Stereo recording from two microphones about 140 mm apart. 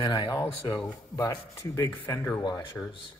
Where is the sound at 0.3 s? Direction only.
30° left (ahead or behind).